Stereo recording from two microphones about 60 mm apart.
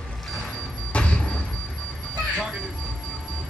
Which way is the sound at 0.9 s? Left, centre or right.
Centre.